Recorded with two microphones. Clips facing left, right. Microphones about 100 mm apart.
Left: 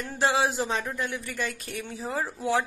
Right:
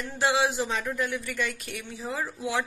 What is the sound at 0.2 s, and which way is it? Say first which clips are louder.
Speech: even; 35° left (ahead or behind).